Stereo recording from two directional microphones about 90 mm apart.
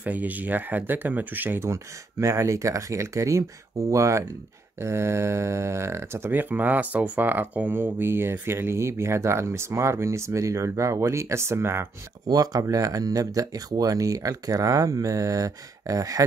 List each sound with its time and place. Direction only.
0.0 s speech: 15° right (ahead or behind)
12.3 s speech: 40° right (ahead or behind)